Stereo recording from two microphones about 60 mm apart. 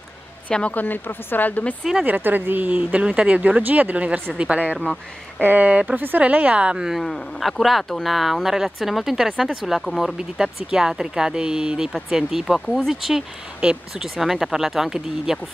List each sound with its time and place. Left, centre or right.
0.5 s speech: centre
0.8 s speech: left
2.0 s speech: right
6.9 s speech: centre
10.1 s speech: centre
13.6 s speech: centre
14.0 s speech: centre